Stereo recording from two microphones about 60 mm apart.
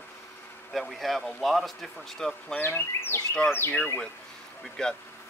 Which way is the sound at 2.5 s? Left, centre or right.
Left.